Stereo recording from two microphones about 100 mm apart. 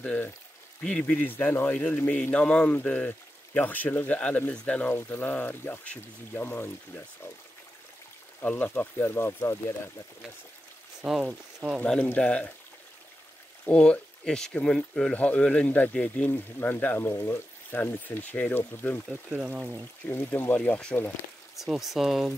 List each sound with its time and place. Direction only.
0.0 s a man's voice: 10° left (ahead or behind)
8.4 s speech: 20° left (ahead or behind)
11.0 s speech: 5° right (ahead or behind)
11.8 s a man's voice: 10° left (ahead or behind)
13.7 s a man's voice: 10° left (ahead or behind)
19.3 s speech: 15° right (ahead or behind)
20.1 s speech: 20° left (ahead or behind)
21.5 s speech: 5° right (ahead or behind)